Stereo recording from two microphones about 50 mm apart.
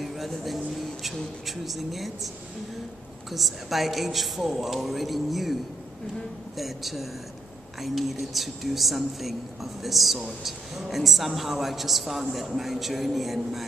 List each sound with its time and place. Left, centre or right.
0.0 s music: centre
1.7 s speech: centre
3.3 s speech: centre